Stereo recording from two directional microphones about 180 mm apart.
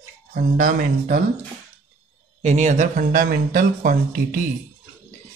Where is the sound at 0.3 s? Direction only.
55° right (ahead or behind).